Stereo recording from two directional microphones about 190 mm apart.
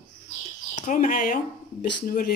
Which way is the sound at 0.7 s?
45° left (ahead or behind).